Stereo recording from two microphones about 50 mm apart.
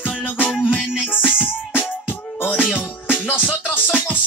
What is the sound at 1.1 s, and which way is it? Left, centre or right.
Music, left.